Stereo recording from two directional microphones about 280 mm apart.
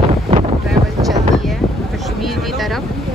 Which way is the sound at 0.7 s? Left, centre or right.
Centre.